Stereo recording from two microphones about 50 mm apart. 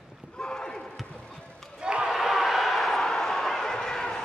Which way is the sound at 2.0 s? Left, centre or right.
Centre.